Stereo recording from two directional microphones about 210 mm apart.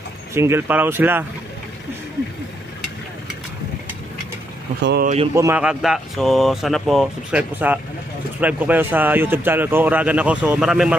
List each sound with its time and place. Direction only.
0.3 s speech: 10° right (ahead or behind)
4.8 s speech: 50° right (ahead or behind)
5.3 s speech: 10° right (ahead or behind)